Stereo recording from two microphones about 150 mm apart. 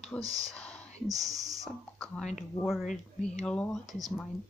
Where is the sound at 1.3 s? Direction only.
25° right (ahead or behind).